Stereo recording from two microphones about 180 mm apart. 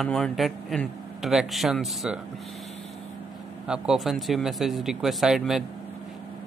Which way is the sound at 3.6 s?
5° right (ahead or behind).